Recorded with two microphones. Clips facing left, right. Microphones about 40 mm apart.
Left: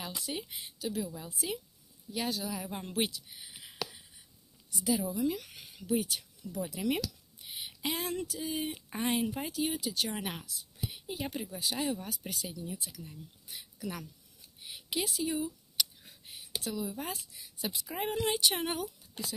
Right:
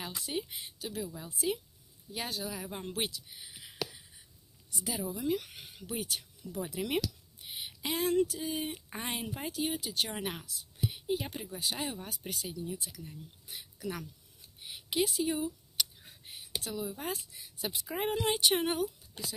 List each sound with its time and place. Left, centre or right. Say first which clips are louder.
0.0 s a woman's voice: right 1 dB; centre
2.4 s speech: left 1 dB; centre
4.7 s a woman's voice: left 5 dB; centre
5.5 s speech: right 1 dB; centre
5.9 s speech: left 6 dB; centre
6.7 s a woman's voice: left 2 dB; centre
7.4 s a sound: left 1 dB; centre
8.1 s a woman's voice: right 8 dB; centre
8.4 s a woman's voice: even; centre
14.6 s a sound: right 4 dB; centre
16.7 s a woman's voice: right 2 dB; centre